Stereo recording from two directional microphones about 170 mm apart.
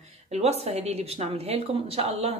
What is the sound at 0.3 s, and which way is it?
A woman's voice, 40° right (ahead or behind).